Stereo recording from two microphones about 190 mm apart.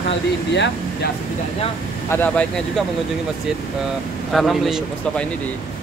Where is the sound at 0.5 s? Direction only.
65° left (ahead or behind).